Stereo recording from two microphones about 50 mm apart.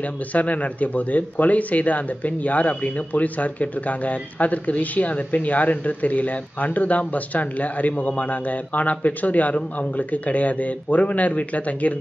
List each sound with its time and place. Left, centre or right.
0.0 s speech: left